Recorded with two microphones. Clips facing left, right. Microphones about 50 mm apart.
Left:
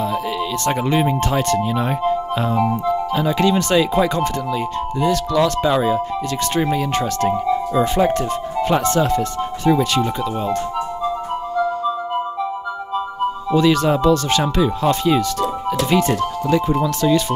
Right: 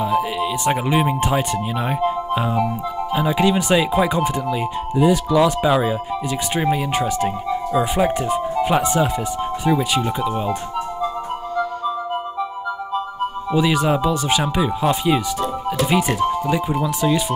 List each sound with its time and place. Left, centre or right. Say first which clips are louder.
0.0 s speech: right 2 dB; centre
13.5 s speech: left 2 dB; centre